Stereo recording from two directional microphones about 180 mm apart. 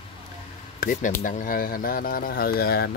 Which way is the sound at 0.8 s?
45° left (ahead or behind).